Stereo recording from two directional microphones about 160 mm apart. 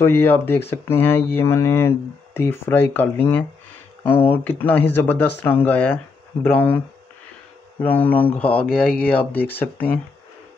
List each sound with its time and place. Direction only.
0.0 s speech: 15° left (ahead or behind)
7.8 s speech: 10° left (ahead or behind)